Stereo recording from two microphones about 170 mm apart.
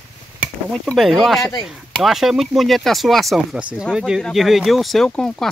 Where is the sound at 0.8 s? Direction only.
Centre (ahead or behind).